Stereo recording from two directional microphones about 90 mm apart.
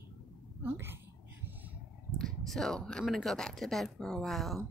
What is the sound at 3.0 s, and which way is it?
Speech, centre (ahead or behind).